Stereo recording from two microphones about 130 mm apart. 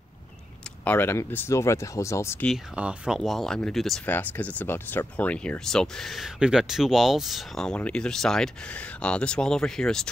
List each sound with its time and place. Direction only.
0.8 s speech: 15° left (ahead or behind)
2.7 s speech: 10° right (ahead or behind)
4.0 s speech: 15° left (ahead or behind)